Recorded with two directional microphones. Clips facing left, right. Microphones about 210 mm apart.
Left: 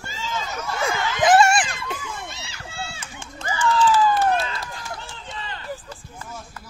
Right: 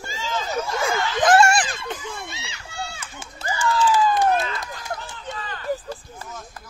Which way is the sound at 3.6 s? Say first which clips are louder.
Left 1 dB; 10° right (ahead or behind).